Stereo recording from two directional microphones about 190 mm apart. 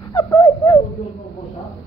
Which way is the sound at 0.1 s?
20° left (ahead or behind).